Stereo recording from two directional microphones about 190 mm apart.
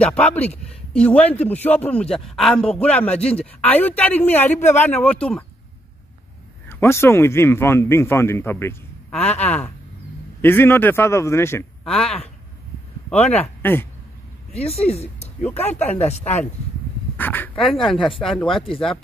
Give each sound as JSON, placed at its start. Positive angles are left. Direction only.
{"t": 0.0, "sound": "speech", "side_deg": 5}
{"t": 6.7, "sound": "speech", "side_deg": 15}
{"t": 11.8, "sound": "speech", "side_deg": 0}
{"t": 13.1, "sound": "speech", "side_deg": 35}
{"t": 13.6, "sound": "speech", "side_deg": 10}
{"t": 14.5, "sound": "speech", "side_deg": 35}
{"t": 15.4, "sound": "speech", "side_deg": 10}
{"t": 16.0, "sound": "speech", "side_deg": 35}
{"t": 17.2, "sound": "speech", "side_deg": 10}